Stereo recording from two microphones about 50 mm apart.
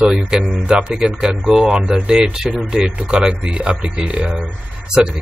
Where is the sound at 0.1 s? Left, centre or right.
Centre.